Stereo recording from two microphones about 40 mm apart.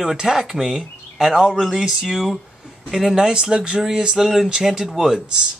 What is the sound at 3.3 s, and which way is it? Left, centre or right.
Speech, right.